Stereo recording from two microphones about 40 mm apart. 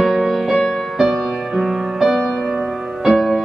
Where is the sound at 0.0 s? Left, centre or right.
Centre.